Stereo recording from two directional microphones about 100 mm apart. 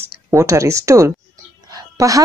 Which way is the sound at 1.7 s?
35° right (ahead or behind).